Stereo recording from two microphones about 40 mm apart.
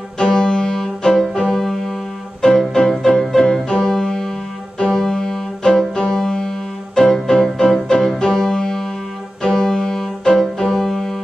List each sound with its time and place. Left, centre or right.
0.2 s music: centre
2.4 s music: centre
4.7 s keyboard: centre
5.6 s music: centre